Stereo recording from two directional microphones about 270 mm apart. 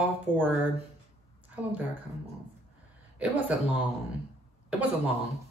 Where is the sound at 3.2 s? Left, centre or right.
Centre.